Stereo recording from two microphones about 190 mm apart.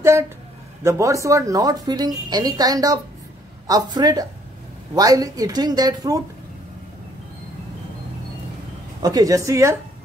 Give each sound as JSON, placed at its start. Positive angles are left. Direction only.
{"t": 0.0, "sound": "a woman's voice", "side_deg": -15}
{"t": 9.0, "sound": "speech", "side_deg": -20}